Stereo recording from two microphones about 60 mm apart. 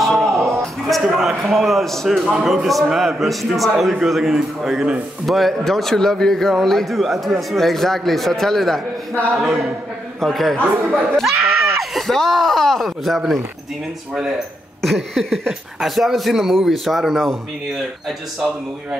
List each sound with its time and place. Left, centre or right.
0.0 s music: centre
0.8 s a man's voice: centre
9.4 s a man's voice: centre
10.6 s speech: right
11.1 s a man's voice: centre
11.5 s screaming: right
11.9 s a man's voice: centre
14.8 s a man's voice: centre